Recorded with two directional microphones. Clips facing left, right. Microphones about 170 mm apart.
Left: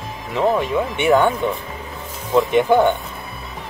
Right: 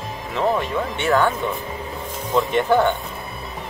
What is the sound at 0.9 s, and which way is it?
Speech, 20° left (ahead or behind).